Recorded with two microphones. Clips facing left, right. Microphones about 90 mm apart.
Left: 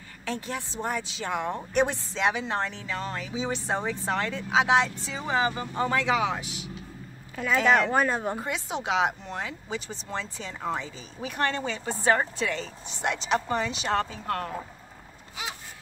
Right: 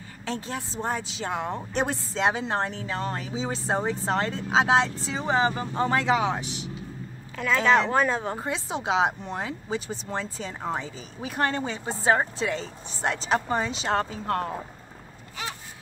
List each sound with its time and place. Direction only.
0.8 s speech: 30° right (ahead or behind)
7.3 s a woman's voice: 10° left (ahead or behind)
8.4 s speech: 30° right (ahead or behind)